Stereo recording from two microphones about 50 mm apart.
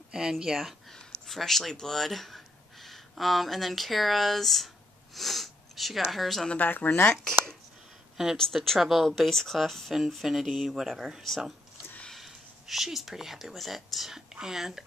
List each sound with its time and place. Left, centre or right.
0.1 s speech: centre
6.5 s speech: left
8.4 s speech: centre
10.2 s speech: centre